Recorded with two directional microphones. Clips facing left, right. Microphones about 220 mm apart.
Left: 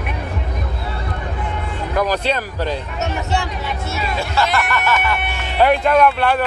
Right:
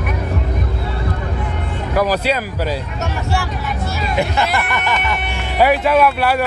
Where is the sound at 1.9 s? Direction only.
5° right (ahead or behind).